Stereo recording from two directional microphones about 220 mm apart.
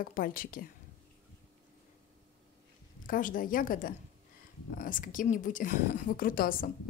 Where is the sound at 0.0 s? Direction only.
40° left (ahead or behind).